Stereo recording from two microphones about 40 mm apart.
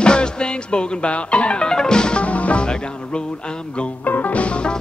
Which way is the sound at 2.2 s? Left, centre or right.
Left.